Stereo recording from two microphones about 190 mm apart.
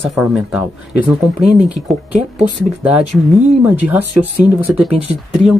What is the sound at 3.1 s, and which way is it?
Speech, centre (ahead or behind).